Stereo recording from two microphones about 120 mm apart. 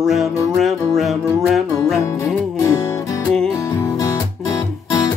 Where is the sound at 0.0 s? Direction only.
Centre (ahead or behind).